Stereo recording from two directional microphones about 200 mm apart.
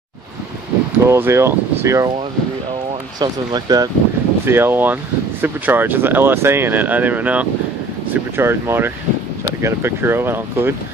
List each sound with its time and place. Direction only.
1.0 s speech: 15° right (ahead or behind)
3.2 s speech: 20° right (ahead or behind)